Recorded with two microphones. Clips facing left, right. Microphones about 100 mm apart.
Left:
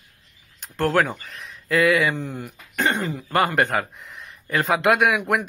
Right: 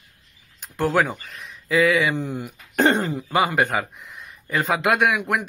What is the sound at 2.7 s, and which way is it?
Speech, 35° right (ahead or behind).